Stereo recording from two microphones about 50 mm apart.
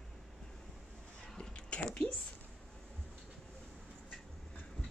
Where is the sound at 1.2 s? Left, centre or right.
Centre.